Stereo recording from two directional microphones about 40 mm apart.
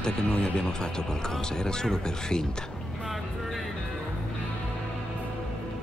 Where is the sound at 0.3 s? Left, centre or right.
Left.